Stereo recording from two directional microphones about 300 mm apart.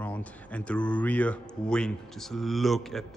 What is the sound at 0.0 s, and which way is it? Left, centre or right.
Speech, centre.